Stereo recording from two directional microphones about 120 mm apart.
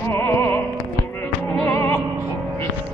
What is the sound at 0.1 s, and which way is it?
Music, 20° left (ahead or behind).